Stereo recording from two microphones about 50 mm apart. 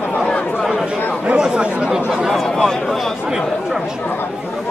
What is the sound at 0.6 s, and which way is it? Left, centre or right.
Speech, centre.